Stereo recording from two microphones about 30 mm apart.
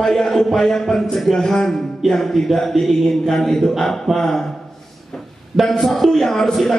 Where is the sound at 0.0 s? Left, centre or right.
Centre.